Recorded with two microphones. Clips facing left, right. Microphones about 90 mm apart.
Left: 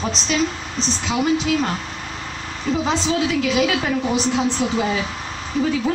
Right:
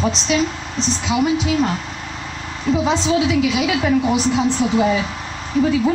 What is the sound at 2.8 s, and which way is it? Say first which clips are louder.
A woman's voice: right 2 dB; centre (ahead or behind).